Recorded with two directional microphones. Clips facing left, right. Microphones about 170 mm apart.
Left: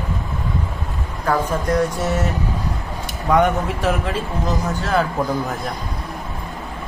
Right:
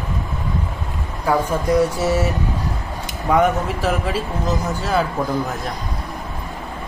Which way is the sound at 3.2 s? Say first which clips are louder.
Even; 5° right (ahead or behind).